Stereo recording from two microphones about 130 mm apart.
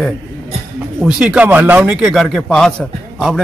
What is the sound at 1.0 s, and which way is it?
A man's voice, 5° right (ahead or behind).